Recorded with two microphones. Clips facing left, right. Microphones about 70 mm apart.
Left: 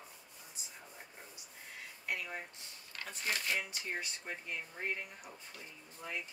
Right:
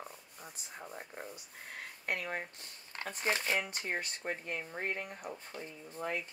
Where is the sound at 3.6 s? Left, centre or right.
Right.